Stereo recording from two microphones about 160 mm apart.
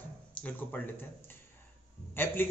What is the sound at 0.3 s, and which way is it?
A man's voice, 10° left (ahead or behind).